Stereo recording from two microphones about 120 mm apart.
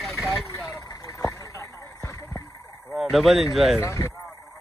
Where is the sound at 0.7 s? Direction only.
30° left (ahead or behind).